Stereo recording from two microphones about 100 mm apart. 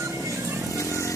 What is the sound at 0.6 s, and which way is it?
Vehicle, 30° left (ahead or behind).